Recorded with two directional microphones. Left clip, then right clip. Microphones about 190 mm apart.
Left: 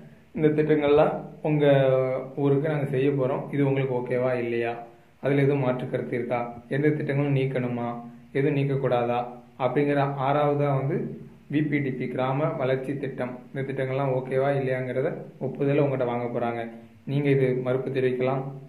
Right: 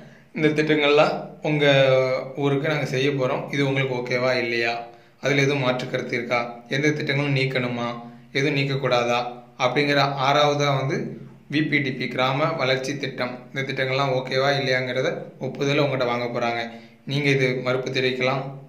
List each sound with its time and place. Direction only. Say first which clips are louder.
0.4 s a man's voice: right 2 dB; 15° right (ahead or behind)